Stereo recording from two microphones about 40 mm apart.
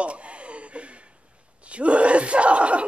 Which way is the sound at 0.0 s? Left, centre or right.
Right.